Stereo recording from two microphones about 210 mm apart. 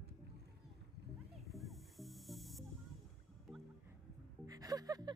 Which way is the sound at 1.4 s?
Centre (ahead or behind).